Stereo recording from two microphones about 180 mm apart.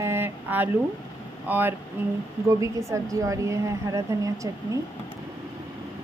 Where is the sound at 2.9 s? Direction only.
15° right (ahead or behind).